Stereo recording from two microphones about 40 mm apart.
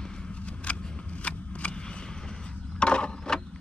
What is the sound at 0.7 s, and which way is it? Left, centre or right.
Scissors, left.